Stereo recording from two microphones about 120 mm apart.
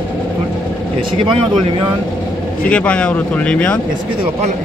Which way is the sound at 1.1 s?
40° right (ahead or behind).